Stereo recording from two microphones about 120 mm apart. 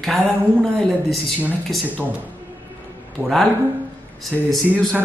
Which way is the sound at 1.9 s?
15° right (ahead or behind).